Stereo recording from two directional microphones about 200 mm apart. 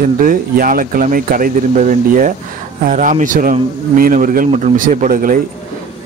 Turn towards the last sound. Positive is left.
turn(degrees=-40)  # may be behind; listen again after turning